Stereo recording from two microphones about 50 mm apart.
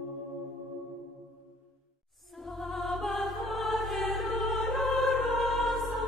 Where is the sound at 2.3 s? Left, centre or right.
Centre.